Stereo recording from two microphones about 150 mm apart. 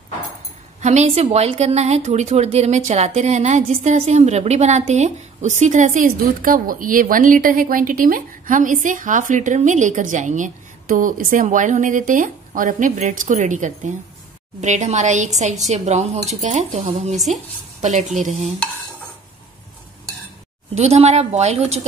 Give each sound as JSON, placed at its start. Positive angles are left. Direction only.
{"t": 0.7, "sound": "a woman's voice", "side_deg": -50}
{"t": 20.7, "sound": "a woman's voice", "side_deg": -45}